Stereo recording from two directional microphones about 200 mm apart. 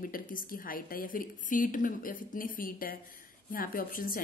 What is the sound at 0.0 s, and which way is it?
A woman's voice, 45° left (ahead or behind).